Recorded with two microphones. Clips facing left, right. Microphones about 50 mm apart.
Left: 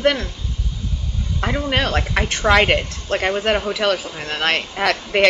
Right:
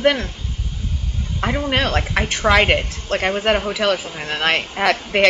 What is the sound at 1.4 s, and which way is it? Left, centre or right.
A woman's voice, centre.